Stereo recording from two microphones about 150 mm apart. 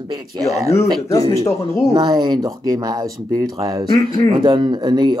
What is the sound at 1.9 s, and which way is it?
Speech, 30° right (ahead or behind).